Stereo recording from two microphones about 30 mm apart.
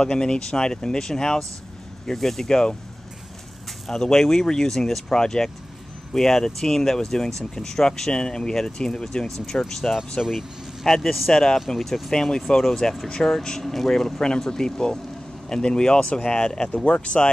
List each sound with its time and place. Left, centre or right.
0.0 s speech: left
3.9 s speech: centre
10.2 s speech: left
10.9 s speech: centre
13.2 s speech: left
13.6 s speech: centre; by 16.8 s left
16.8 s speech: left